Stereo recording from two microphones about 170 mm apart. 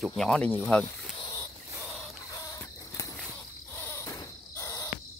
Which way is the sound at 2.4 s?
20° left (ahead or behind).